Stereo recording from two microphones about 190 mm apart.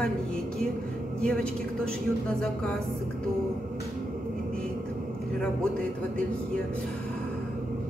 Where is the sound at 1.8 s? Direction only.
5° left (ahead or behind).